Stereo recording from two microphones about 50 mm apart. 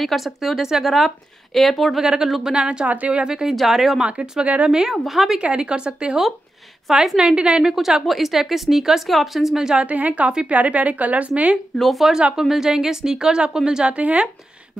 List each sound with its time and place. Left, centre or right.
0.0 s a woman's voice: centre
2.5 s a woman's voice: centre
3.5 s a woman's voice: centre
4.0 s a woman's voice: centre
5.4 s a woman's voice: right
6.9 s a woman's voice: centre
7.2 s a woman's voice: centre
7.7 s a woman's voice: centre
9.8 s a woman's voice: right
11.8 s a woman's voice: centre
12.1 s speech: centre
13.9 s a woman's voice: right